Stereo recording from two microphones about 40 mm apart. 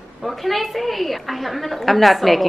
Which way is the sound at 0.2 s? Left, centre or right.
Centre.